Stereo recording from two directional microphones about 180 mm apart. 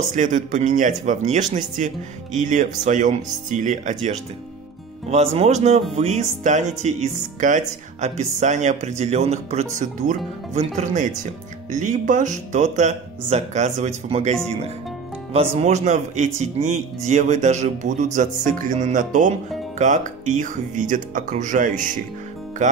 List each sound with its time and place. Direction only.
0.1 s speech: 45° right (ahead or behind)
5.1 s speech: 35° right (ahead or behind)
15.6 s speech: 40° right (ahead or behind)